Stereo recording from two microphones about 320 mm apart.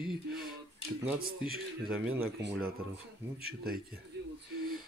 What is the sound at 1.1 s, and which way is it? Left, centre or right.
A man's voice, right.